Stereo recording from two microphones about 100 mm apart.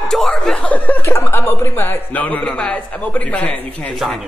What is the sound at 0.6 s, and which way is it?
Speech, 15° left (ahead or behind).